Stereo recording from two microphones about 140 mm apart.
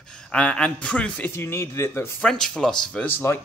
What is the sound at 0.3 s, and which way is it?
Speech, 10° left (ahead or behind).